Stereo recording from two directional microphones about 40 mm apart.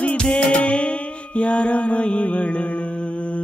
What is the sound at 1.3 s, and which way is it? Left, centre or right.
Mantra, left.